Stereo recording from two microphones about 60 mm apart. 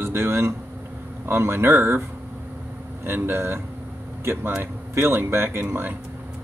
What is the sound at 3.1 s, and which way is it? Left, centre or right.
Speech, right.